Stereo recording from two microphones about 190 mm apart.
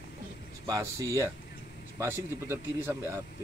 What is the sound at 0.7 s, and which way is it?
Speech, 15° right (ahead or behind).